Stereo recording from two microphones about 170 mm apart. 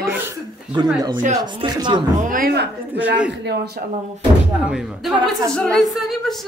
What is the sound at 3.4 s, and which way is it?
Speech, 75° right (ahead or behind).